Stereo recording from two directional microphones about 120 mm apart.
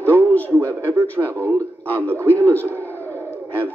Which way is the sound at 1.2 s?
15° right (ahead or behind).